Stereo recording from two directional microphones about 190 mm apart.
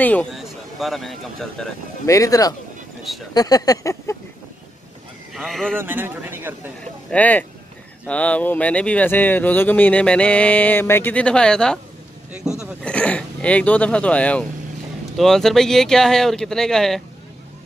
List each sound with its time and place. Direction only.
0.0 s speech: 5° left (ahead or behind)
2.0 s speech: 15° left (ahead or behind)
3.3 s a sound: 20° left (ahead or behind)
5.3 s speech: centre (ahead or behind)
5.8 s speech: 10° right (ahead or behind)
7.1 s speech: 10° left (ahead or behind)